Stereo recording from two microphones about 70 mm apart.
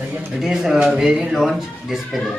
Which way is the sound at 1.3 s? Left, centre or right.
Centre.